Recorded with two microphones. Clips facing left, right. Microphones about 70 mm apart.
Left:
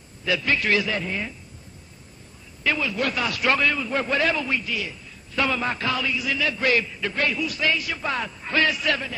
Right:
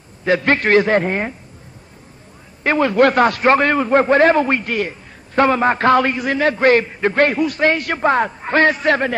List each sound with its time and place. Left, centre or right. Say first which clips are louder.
0.2 s a man's voice: right 8 dB; right
2.6 s a man's voice: right 11 dB; right